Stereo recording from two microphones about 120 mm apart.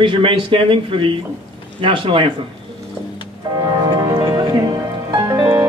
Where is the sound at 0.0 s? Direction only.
45° right (ahead or behind).